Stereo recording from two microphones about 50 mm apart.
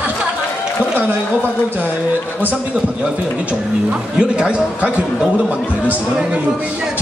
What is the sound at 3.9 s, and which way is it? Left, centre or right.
Speech, centre.